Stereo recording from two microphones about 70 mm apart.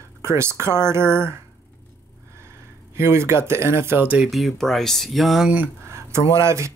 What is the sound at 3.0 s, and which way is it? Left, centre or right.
Speech, right.